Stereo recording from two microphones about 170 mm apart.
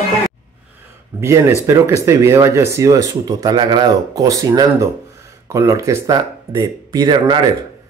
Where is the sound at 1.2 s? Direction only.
15° right (ahead or behind).